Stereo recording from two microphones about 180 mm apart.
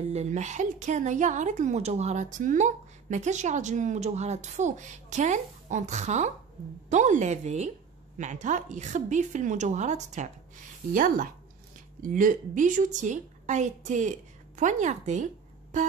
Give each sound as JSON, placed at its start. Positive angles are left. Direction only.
{"t": 0.1, "sound": "a woman's voice", "side_deg": -40}